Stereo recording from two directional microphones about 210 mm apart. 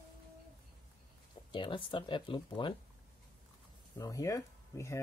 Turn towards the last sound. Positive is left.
turn(degrees=15)  # may be behind; listen again after turning